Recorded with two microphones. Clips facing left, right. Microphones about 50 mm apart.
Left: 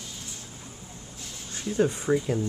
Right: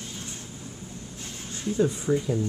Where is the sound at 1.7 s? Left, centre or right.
Left.